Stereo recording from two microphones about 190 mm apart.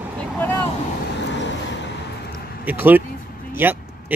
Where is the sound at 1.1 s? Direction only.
70° left (ahead or behind).